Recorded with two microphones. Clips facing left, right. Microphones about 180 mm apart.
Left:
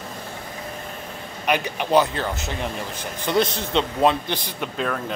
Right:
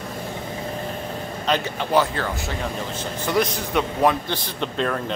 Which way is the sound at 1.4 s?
15° left (ahead or behind).